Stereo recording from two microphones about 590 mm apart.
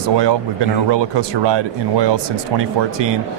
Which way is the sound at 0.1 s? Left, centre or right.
Right.